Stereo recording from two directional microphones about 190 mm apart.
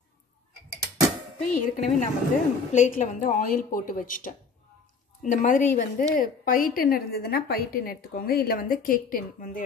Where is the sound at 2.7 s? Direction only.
40° left (ahead or behind).